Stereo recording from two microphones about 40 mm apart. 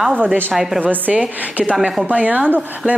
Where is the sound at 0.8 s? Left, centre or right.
Right.